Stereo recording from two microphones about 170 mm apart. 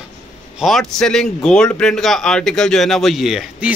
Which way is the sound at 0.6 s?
Centre (ahead or behind).